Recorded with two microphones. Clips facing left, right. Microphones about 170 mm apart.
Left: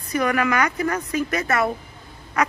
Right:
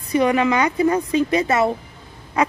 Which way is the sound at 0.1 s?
25° right (ahead or behind).